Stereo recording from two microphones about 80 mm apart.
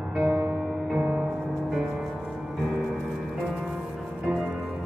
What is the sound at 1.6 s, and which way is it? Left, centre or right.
Music, centre.